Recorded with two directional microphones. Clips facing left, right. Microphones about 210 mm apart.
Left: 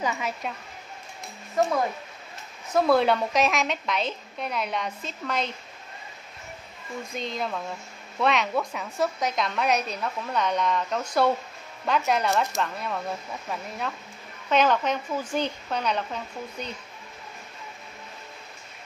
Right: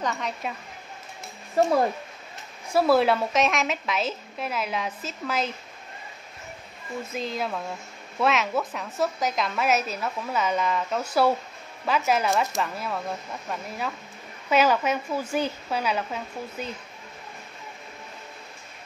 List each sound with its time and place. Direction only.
0.0 s a woman's voice: 5° left (ahead or behind)
1.6 s speech: 30° right (ahead or behind)
2.7 s a woman's voice: 5° right (ahead or behind)
7.1 s a woman's voice: 5° right (ahead or behind)